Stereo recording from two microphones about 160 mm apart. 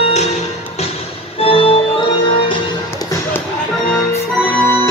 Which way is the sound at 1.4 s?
35° left (ahead or behind).